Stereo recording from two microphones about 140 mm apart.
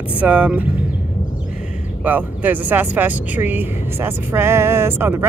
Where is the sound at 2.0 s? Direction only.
10° right (ahead or behind).